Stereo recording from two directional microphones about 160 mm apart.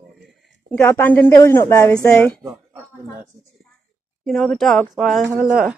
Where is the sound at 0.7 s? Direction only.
15° left (ahead or behind).